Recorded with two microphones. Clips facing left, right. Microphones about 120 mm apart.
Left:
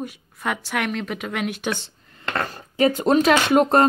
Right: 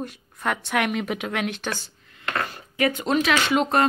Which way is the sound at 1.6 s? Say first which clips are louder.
Left 4 dB; 20° left (ahead or behind).